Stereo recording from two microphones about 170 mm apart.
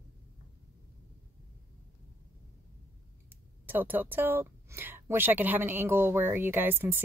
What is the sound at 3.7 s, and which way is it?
A woman's voice, 10° right (ahead or behind).